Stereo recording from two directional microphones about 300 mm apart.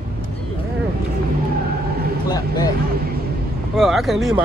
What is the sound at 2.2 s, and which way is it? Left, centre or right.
Speech, centre.